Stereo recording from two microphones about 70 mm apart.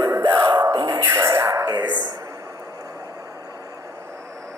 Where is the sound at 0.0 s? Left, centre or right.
Right.